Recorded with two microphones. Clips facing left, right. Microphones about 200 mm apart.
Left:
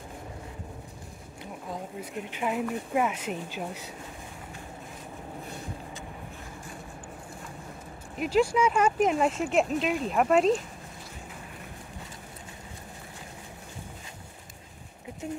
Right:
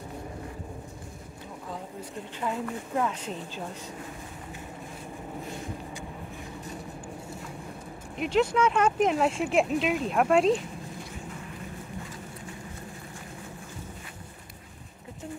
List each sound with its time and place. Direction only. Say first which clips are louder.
1.7 s speech: left 2 dB; 15° left (ahead or behind)
8.2 s speech: even; 5° left (ahead or behind)